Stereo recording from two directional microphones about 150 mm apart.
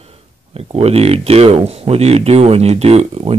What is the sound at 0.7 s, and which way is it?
Speech, 40° right (ahead or behind).